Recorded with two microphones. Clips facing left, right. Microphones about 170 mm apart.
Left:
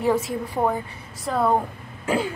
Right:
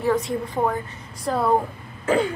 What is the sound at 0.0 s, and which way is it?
A woman's voice, 5° left (ahead or behind).